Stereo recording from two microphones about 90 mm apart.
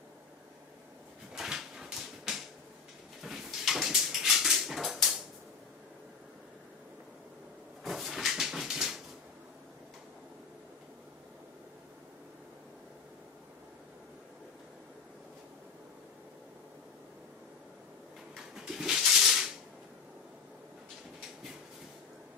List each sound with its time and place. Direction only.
1.3 s dog: 5° right (ahead or behind)
7.8 s dog: centre (ahead or behind)
18.5 s a sound: 5° right (ahead or behind)